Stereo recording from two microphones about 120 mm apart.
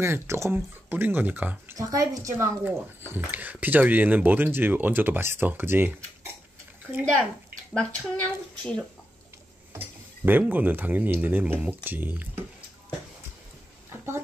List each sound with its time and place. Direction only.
0.0 s speech: 20° right (ahead or behind)
1.8 s a woman's voice: 30° right (ahead or behind)
7.7 s speech: 10° left (ahead or behind)
9.7 s speech: 15° right (ahead or behind)